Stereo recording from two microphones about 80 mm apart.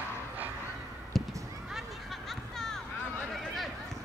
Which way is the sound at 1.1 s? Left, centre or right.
Centre.